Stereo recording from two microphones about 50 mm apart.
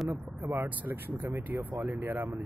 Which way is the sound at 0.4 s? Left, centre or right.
Right.